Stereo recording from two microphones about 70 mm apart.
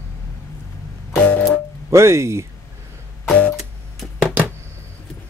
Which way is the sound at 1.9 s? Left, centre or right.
Right.